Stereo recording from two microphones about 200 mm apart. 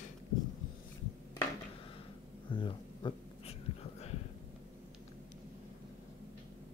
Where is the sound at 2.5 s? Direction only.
25° left (ahead or behind).